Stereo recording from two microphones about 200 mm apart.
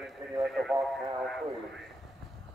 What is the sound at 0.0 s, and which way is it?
Radio, centre (ahead or behind).